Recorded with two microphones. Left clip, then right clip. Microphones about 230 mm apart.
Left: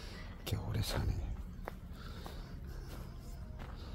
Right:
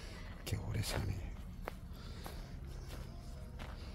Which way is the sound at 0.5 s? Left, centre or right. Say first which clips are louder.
Left 2 dB; centre.